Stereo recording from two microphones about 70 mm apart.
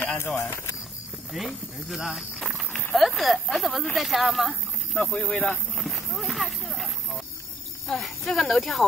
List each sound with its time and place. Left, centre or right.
0.4 s speech: left
1.3 s speech: centre
4.9 s speech: left
5.3 s a sound: centre
8.0 s speech: centre